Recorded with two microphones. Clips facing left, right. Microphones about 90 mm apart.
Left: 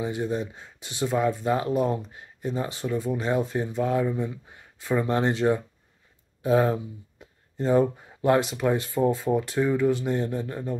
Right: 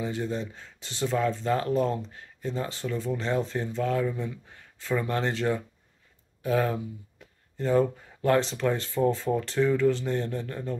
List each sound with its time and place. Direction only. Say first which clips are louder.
0.0 s speech: left 3 dB; 20° left (ahead or behind)